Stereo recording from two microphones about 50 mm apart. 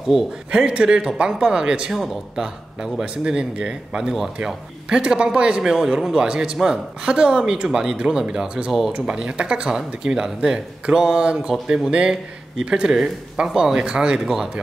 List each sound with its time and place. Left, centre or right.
0.1 s a man's voice: centre
0.5 s speech: centre
14.2 s speech: centre